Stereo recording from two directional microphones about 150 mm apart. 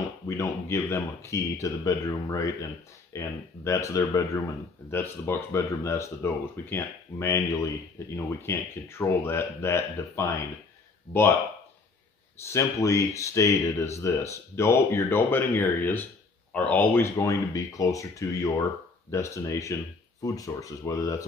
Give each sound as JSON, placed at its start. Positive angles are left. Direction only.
{"t": 0.3, "sound": "speech", "side_deg": 20}
{"t": 12.4, "sound": "speech", "side_deg": 20}